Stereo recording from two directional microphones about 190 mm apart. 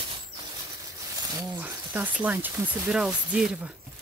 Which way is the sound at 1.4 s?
10° right (ahead or behind).